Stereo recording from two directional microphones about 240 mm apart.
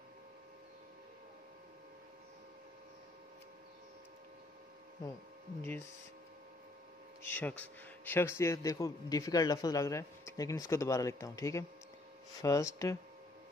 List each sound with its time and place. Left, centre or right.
5.6 s a man's voice: centre
7.2 s a man's voice: centre